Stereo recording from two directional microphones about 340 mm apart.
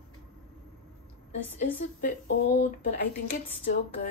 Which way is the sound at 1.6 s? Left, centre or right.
Left.